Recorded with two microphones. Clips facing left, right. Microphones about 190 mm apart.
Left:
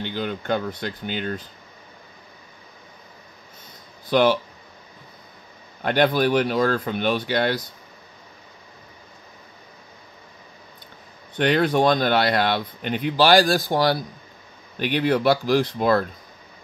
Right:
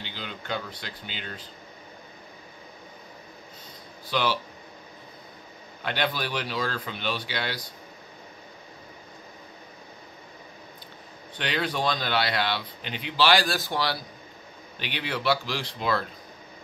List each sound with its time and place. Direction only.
0.0 s speech: 50° left (ahead or behind)
4.1 s speech: 50° left (ahead or behind)
5.9 s speech: 50° left (ahead or behind)
11.3 s speech: 50° left (ahead or behind)